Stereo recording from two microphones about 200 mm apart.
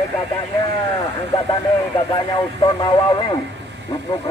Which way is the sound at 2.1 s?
20° left (ahead or behind).